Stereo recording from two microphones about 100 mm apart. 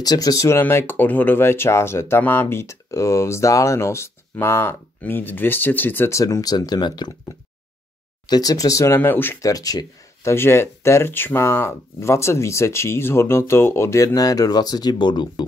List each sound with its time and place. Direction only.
0.0 s speech: 40° left (ahead or behind); by 6.2 s 25° left (ahead or behind)
6.2 s speech: 40° left (ahead or behind)
8.3 s speech: 40° left (ahead or behind); by 9.4 s 20° left (ahead or behind)
9.4 s speech: 35° left (ahead or behind)
10.3 s speech: 25° left (ahead or behind); by 15.4 s 50° left (ahead or behind)